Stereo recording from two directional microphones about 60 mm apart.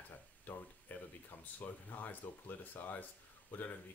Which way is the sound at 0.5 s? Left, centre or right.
Left.